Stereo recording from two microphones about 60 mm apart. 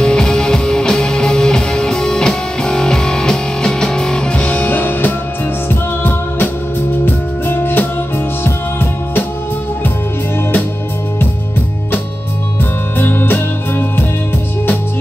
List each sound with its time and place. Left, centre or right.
0.0 s music: centre; by 5.1 s left
7.4 s music: left
12.9 s music: left